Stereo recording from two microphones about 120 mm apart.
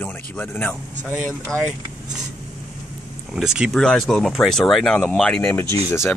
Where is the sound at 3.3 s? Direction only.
5° right (ahead or behind).